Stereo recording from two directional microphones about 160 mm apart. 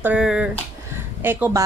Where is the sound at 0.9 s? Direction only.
15° right (ahead or behind).